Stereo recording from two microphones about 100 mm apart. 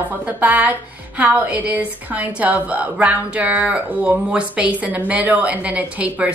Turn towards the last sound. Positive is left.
turn(degrees=-15)  # may be behind; listen again after turning